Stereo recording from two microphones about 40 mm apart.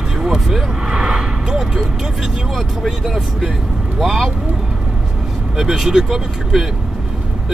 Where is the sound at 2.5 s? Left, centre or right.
Centre.